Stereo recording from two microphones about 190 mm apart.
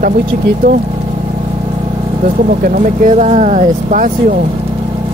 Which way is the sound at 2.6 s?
45° right (ahead or behind).